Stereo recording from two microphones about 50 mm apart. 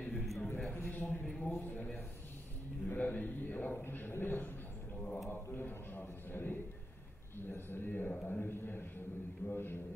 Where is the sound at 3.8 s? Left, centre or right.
Left.